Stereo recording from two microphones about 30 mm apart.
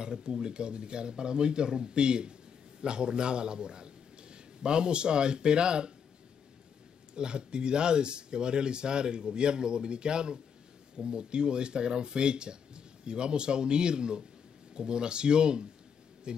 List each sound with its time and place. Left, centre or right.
0.0 s a man's voice: right
7.2 s a man's voice: right